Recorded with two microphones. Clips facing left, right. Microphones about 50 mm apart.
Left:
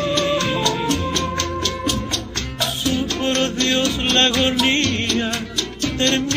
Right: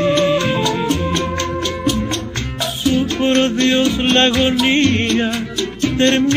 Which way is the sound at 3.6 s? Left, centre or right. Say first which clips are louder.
Right 5 dB; centre.